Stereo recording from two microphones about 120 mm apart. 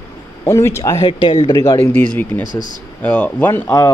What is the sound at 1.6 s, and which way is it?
Speech, 25° left (ahead or behind).